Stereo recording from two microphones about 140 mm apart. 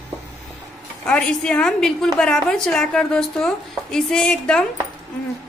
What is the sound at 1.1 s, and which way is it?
A woman's voice, 5° left (ahead or behind).